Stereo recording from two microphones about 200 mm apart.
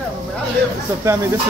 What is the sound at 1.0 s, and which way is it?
Speech, 15° right (ahead or behind).